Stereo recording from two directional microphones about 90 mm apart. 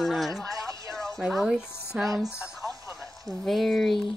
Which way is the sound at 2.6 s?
40° right (ahead or behind).